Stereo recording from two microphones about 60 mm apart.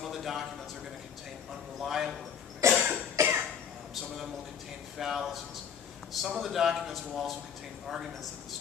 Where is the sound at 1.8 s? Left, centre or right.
Centre.